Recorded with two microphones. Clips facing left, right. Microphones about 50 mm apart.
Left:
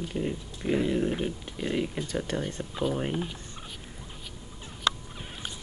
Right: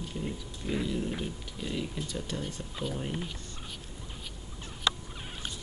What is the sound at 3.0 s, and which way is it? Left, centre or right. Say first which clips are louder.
Speech: left 5 dB; left.